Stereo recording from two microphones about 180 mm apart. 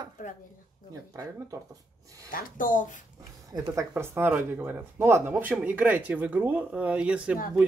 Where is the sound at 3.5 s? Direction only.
15° right (ahead or behind).